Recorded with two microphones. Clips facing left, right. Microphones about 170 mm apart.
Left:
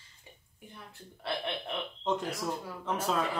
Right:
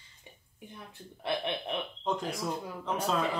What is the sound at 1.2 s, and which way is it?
Speech, 20° right (ahead or behind).